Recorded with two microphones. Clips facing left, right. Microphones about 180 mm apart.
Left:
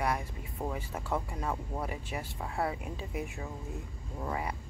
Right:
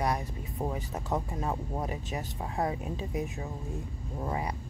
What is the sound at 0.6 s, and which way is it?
Speech, 15° right (ahead or behind).